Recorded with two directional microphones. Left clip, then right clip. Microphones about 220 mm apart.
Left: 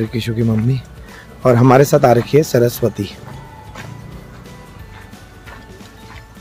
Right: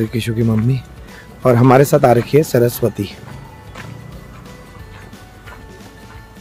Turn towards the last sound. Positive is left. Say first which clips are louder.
# even
turn(degrees=0)  # may be behind; listen again after turning